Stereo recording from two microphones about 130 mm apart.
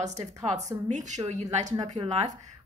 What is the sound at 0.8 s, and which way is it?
A woman's voice, 65° right (ahead or behind).